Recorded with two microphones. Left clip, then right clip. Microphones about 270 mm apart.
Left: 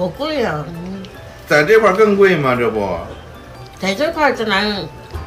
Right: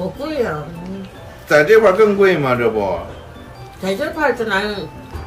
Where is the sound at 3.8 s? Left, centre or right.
Left.